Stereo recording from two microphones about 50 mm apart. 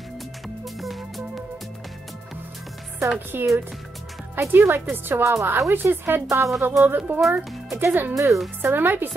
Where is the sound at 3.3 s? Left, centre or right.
Right.